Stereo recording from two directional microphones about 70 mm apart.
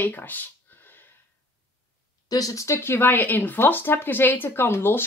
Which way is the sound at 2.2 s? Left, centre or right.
Left.